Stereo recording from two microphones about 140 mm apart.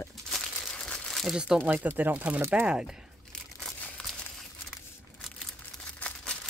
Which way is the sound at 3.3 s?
5° left (ahead or behind).